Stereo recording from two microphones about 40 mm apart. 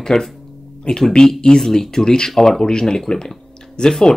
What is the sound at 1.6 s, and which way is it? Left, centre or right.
Speech, centre.